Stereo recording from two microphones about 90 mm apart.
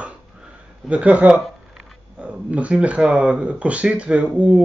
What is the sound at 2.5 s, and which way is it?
Speech, 15° right (ahead or behind).